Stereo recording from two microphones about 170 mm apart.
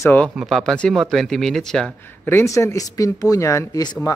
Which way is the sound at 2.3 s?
15° left (ahead or behind).